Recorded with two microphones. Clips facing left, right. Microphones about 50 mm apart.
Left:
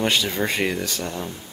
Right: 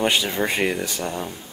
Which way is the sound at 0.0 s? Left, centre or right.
Centre.